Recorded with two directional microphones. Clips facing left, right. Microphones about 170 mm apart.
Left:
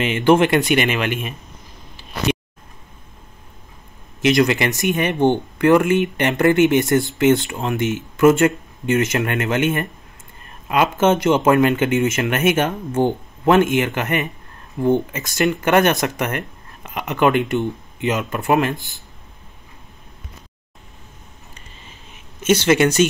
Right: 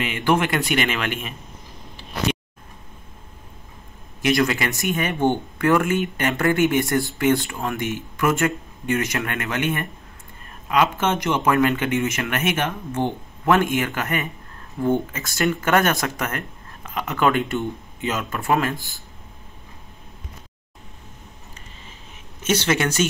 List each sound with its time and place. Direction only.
0.0 s speech: 25° left (ahead or behind)
4.2 s speech: 20° left (ahead or behind)
13.5 s speech: 20° left (ahead or behind)
22.5 s speech: 15° left (ahead or behind)